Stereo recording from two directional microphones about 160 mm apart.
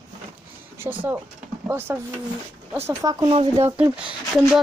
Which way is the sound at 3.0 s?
20° right (ahead or behind).